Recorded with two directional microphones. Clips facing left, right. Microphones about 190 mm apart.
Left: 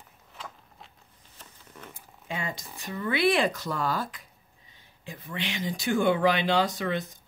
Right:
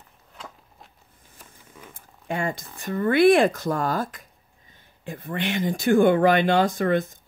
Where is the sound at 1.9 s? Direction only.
50° right (ahead or behind).